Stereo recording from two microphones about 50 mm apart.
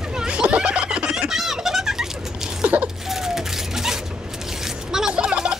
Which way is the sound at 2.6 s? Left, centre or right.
Right.